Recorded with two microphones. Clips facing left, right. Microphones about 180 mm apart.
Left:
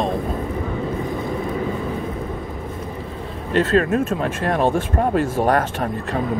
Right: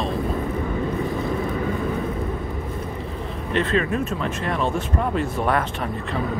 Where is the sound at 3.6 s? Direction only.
45° left (ahead or behind).